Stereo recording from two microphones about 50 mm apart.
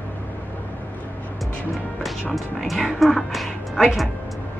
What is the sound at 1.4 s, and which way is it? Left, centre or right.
Speech, centre.